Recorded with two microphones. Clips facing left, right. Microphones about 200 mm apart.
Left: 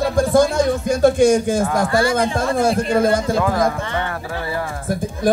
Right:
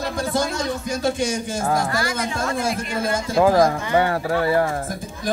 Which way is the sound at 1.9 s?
30° left (ahead or behind).